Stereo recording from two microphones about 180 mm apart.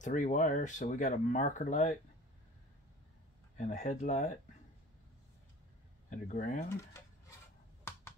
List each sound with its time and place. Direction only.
0.0 s speech: 45° left (ahead or behind)
3.5 s speech: 40° left (ahead or behind)
6.0 s speech: 45° left (ahead or behind)